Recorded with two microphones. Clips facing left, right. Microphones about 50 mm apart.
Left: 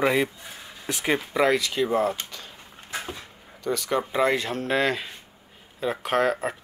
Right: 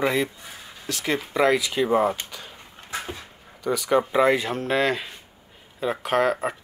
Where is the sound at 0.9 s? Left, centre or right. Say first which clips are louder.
Left 1 dB; centre.